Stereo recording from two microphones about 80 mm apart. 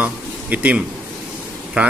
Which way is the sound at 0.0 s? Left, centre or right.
Centre.